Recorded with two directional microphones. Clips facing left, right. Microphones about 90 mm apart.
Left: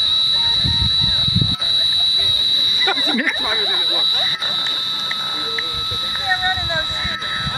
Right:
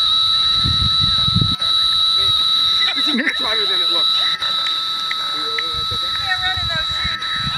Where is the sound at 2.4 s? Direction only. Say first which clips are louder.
Right 4 dB; 35° right (ahead or behind).